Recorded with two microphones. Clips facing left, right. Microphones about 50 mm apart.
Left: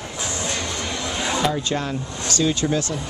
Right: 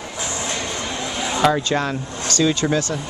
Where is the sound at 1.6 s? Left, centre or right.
Right.